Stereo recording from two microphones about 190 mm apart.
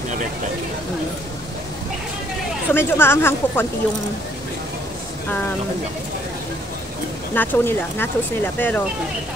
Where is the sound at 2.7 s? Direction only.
10° left (ahead or behind).